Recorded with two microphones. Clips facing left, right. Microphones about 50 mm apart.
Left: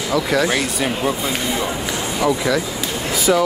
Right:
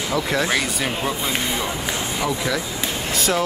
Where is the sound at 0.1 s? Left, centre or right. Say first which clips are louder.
Left 4 dB; right.